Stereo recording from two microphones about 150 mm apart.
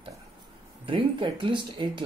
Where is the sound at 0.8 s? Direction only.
35° right (ahead or behind).